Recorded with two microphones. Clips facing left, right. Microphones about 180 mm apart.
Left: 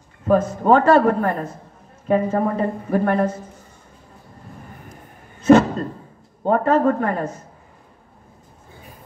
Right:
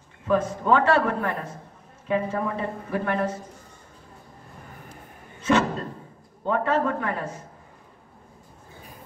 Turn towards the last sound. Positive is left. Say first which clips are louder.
# left 7 dB
turn(degrees=45)  # may be behind; listen again after turning